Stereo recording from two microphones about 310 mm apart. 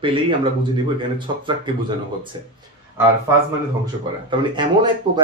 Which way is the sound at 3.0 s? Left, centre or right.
Centre.